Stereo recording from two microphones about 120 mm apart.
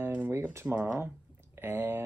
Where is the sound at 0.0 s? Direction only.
15° right (ahead or behind).